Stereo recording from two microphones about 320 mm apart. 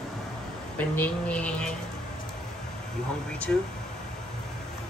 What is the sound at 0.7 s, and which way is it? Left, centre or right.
Speech, centre.